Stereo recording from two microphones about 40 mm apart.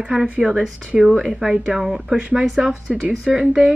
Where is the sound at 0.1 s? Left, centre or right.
Centre.